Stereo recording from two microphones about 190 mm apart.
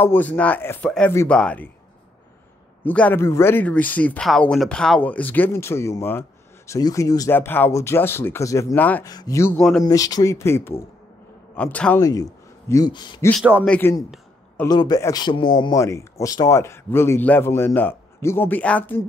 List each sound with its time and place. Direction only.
0.0 s speech: 10° left (ahead or behind)
2.8 s speech: 10° left (ahead or behind)
9.6 s speech: centre (ahead or behind)
9.8 s speech: 20° left (ahead or behind)
12.0 s a man's voice: 20° left (ahead or behind)
13.7 s speech: 10° left (ahead or behind)